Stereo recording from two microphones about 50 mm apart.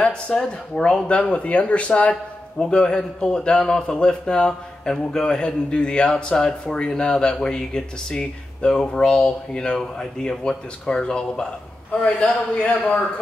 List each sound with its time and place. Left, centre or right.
0.0 s a man's voice: centre
1.3 s a man's voice: left